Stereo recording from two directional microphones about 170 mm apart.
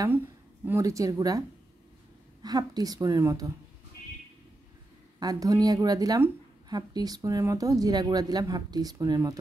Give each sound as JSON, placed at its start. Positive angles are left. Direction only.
{"t": 0.7, "sound": "a woman's voice", "side_deg": -20}
{"t": 2.4, "sound": "a woman's voice", "side_deg": -20}
{"t": 5.2, "sound": "a woman's voice", "side_deg": -20}